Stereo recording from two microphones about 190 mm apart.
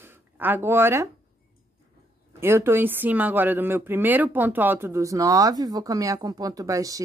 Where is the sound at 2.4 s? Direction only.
15° right (ahead or behind).